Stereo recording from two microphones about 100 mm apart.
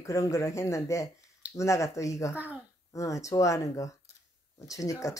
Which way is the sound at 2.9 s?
35° left (ahead or behind).